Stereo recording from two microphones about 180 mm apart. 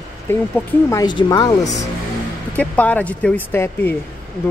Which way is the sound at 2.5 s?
10° left (ahead or behind).